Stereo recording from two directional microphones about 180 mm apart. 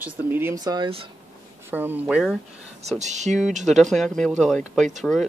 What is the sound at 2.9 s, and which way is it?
Speech, 40° right (ahead or behind).